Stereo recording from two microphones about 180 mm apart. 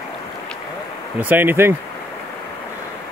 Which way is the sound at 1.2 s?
10° right (ahead or behind).